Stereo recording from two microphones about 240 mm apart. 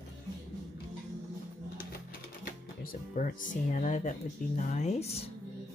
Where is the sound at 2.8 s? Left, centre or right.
Left.